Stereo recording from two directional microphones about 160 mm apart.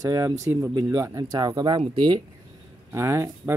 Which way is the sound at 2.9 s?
15° right (ahead or behind).